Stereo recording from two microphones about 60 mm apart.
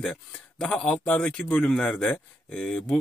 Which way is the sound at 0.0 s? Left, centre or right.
Centre.